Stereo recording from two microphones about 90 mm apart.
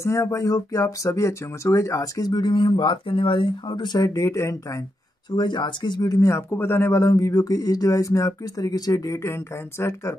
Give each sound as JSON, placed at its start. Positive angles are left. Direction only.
{"t": 0.0, "sound": "speech", "side_deg": 35}
{"t": 4.1, "sound": "speech", "side_deg": 35}
{"t": 5.3, "sound": "speech", "side_deg": 55}
{"t": 6.2, "sound": "speech", "side_deg": 30}